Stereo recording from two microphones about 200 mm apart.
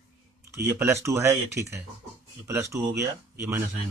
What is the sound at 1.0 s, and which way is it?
Speech, 15° right (ahead or behind).